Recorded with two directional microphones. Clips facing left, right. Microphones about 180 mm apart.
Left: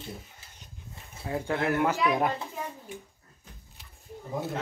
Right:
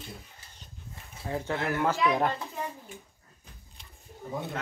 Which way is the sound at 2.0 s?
5° left (ahead or behind).